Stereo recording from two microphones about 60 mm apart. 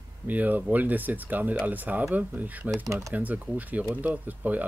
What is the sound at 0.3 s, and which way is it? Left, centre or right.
Speech, right.